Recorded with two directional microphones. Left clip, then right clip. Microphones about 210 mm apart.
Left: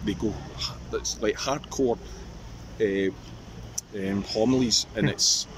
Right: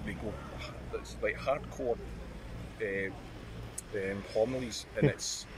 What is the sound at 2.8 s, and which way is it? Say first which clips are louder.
Speech: left 9 dB; 60° left (ahead or behind).